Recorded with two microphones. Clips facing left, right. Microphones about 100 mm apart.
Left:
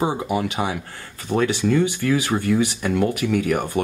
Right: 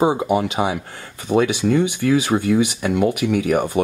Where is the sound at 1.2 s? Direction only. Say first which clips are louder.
Right 3 dB; 10° right (ahead or behind).